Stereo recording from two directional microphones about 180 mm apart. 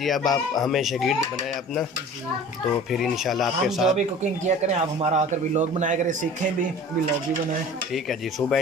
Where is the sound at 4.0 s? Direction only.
40° right (ahead or behind).